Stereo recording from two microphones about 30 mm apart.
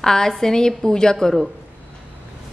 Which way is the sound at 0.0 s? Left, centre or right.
Centre.